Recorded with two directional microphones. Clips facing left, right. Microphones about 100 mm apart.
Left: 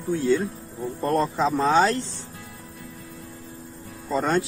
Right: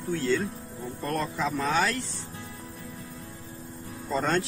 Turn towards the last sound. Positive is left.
turn(degrees=5)  # may be behind; listen again after turning